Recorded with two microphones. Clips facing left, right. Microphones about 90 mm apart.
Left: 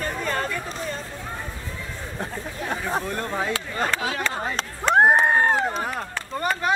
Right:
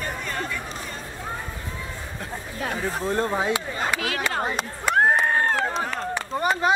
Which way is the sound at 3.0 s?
25° right (ahead or behind).